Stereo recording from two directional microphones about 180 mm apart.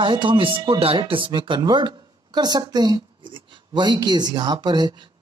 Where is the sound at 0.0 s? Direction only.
25° right (ahead or behind).